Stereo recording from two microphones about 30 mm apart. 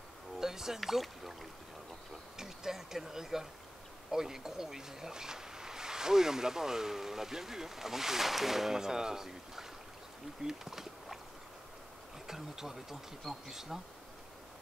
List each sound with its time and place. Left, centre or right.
0.4 s music: centre
0.7 s speech: centre
2.3 s speech: centre
10.4 s a sound: centre
12.3 s speech: centre